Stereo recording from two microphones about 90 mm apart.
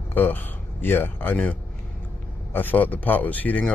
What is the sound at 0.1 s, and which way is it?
Speech, 20° left (ahead or behind).